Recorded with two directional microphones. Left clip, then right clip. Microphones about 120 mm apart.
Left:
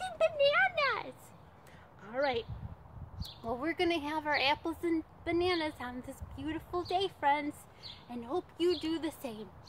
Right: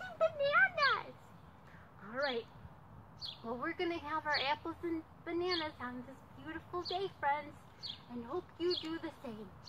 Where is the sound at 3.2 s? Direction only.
25° left (ahead or behind).